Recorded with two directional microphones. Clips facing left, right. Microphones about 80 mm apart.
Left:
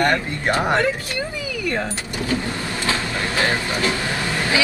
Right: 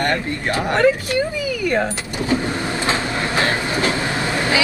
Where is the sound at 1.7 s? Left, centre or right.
Right.